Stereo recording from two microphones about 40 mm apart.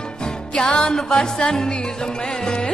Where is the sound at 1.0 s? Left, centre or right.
Centre.